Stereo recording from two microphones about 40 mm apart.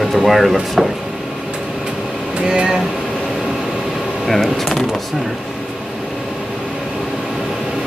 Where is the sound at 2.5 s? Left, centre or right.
Centre.